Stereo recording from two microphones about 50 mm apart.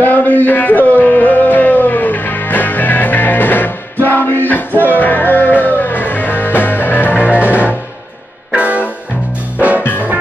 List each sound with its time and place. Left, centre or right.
0.0 s music: left
7.2 s music: right